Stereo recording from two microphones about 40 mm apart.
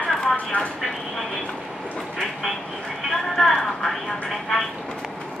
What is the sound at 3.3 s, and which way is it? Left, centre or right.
Vehicle, centre.